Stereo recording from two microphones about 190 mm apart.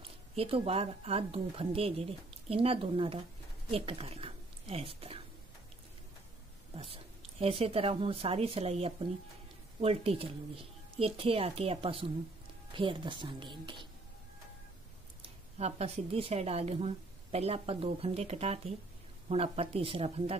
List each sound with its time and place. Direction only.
0.4 s speech: 30° right (ahead or behind)
6.7 s speech: 30° right (ahead or behind)
15.2 s speech: 30° right (ahead or behind)